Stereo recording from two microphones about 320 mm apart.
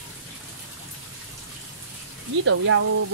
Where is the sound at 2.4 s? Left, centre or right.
Right.